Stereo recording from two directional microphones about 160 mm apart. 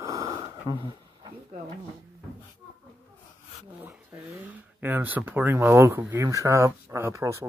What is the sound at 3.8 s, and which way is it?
Speech, 10° right (ahead or behind).